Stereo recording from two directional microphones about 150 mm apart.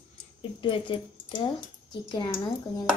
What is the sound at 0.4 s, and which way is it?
Speech, 35° left (ahead or behind).